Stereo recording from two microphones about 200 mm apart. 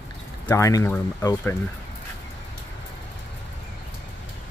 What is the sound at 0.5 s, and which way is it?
Speech, 15° left (ahead or behind).